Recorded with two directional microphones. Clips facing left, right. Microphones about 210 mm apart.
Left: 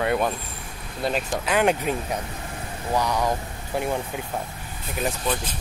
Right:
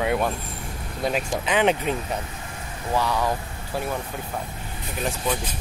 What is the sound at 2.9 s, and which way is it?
Speech, 15° left (ahead or behind).